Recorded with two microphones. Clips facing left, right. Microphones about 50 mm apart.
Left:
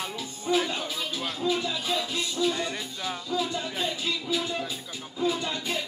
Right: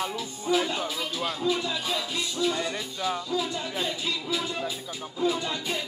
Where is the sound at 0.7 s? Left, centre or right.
Right.